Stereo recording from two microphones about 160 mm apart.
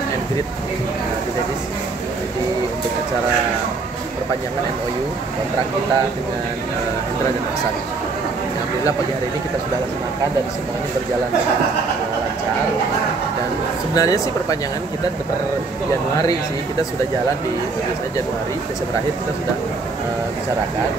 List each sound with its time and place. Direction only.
13.9 s speech: 20° left (ahead or behind)